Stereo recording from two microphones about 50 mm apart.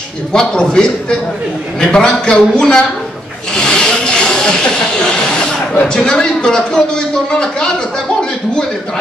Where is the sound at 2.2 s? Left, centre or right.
Centre.